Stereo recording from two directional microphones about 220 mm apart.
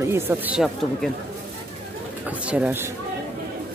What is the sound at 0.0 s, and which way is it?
Speech, 10° right (ahead or behind).